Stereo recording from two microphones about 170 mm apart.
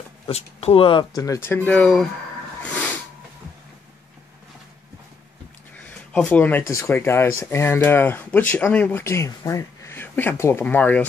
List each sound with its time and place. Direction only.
0.3 s speech: 40° left (ahead or behind); by 2.0 s 5° left (ahead or behind)
5.9 s a sound: 10° left (ahead or behind)
6.7 s speech: 15° left (ahead or behind)